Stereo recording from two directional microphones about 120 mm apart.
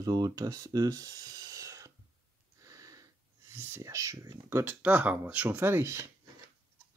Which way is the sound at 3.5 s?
20° right (ahead or behind).